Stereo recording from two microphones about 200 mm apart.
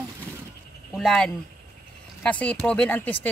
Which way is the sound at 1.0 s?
Centre (ahead or behind).